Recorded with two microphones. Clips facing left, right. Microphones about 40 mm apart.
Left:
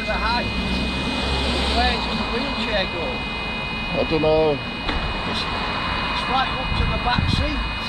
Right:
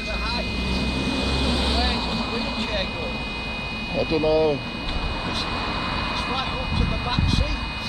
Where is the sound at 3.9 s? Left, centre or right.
Left.